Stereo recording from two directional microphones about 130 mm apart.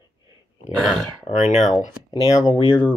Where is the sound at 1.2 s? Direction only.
65° left (ahead or behind).